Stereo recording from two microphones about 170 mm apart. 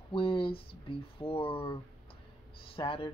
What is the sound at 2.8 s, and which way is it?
Speech, 30° left (ahead or behind).